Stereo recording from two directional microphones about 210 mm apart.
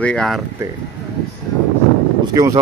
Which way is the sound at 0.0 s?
5° left (ahead or behind).